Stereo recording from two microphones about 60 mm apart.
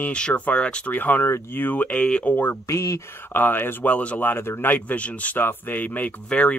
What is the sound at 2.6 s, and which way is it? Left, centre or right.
Speech, left.